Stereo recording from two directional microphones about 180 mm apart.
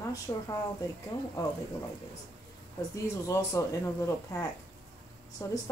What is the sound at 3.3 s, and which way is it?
Speech, 15° left (ahead or behind).